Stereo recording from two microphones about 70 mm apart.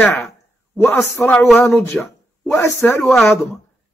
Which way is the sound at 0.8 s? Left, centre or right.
Left.